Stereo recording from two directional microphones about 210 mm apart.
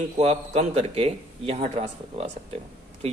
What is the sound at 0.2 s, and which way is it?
Speech, 30° right (ahead or behind).